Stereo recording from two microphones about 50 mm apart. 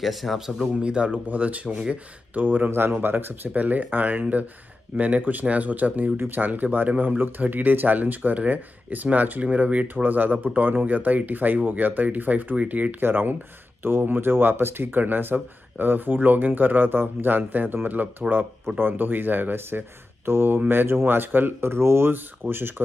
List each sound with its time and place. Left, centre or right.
0.0 s speech: centre
0.5 s speech: centre
2.3 s speech: right
2.7 s speech: right
13.0 s speech: right